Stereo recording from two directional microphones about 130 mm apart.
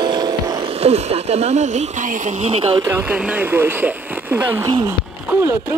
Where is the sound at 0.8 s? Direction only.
55° right (ahead or behind).